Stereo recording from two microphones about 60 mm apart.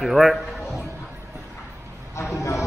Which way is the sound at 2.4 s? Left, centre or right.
Left.